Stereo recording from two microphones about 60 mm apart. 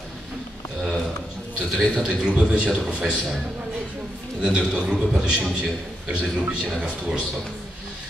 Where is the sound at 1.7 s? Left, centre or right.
Centre.